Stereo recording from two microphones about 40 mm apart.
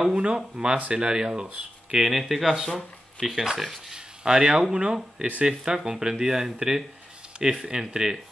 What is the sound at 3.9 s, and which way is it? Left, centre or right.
Speech, centre.